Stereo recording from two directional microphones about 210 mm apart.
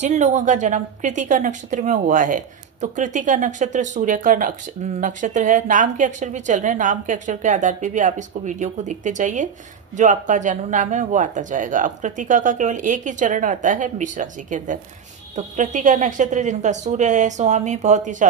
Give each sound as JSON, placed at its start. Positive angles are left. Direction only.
{"t": 0.0, "sound": "speech", "side_deg": -35}